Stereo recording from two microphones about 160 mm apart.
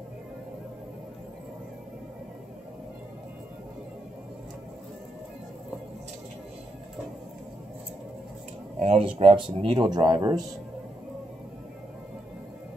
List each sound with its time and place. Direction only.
8.7 s speech: 40° right (ahead or behind)